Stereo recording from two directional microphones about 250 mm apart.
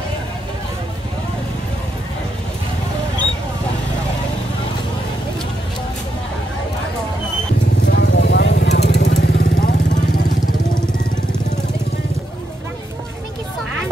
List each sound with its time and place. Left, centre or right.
7.8 s vehicle: left